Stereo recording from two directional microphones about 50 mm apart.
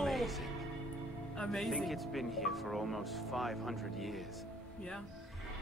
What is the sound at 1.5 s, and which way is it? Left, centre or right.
Speech, centre.